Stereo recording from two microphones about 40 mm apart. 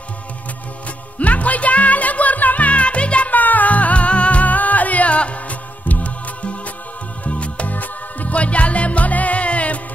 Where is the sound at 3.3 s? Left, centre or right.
Left.